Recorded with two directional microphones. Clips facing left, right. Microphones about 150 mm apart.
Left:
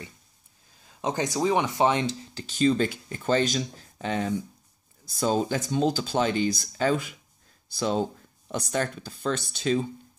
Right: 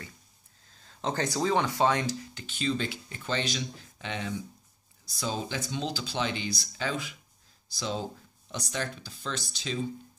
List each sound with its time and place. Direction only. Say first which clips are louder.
0.8 s speech: left 3 dB; 15° left (ahead or behind)
2.3 s speech: left 11 dB; 40° left (ahead or behind)